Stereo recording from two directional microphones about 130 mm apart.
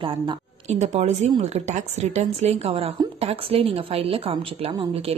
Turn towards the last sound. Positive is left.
turn(degrees=-45)  # may be behind; listen again after turning